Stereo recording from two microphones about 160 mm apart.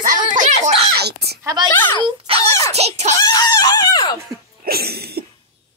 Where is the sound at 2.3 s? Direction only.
35° right (ahead or behind).